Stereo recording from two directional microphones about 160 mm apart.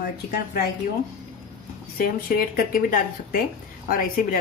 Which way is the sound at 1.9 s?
65° left (ahead or behind).